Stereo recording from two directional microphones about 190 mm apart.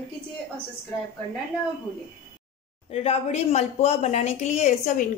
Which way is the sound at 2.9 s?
30° left (ahead or behind).